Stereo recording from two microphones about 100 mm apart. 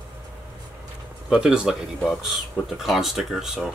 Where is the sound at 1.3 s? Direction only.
10° right (ahead or behind).